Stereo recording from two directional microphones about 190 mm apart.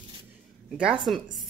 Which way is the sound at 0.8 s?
Centre (ahead or behind).